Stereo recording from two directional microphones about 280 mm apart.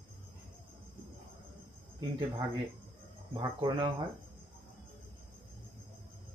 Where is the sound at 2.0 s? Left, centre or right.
Centre.